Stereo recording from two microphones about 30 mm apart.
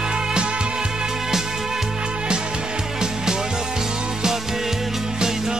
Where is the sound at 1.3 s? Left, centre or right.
Centre.